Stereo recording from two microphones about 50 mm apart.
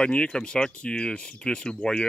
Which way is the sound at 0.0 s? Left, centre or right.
Centre.